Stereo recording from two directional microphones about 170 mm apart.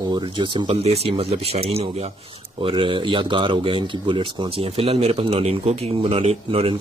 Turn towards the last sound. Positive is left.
turn(degrees=-35)  # may be behind; listen again after turning